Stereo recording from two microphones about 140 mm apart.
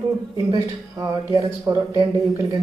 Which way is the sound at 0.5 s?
25° right (ahead or behind).